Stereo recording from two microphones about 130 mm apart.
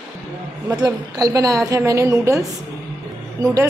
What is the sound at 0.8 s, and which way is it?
Speech, 30° right (ahead or behind).